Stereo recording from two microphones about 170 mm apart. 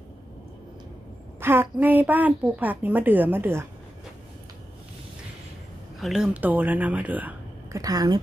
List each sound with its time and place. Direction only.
1.4 s a woman's voice: 15° right (ahead or behind)
5.9 s speech: centre (ahead or behind)
7.8 s speech: 20° right (ahead or behind)